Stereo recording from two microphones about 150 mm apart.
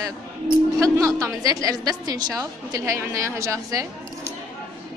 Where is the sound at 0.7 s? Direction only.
20° right (ahead or behind).